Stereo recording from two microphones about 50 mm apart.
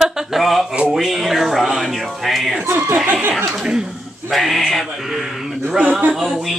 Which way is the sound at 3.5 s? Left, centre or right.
Centre.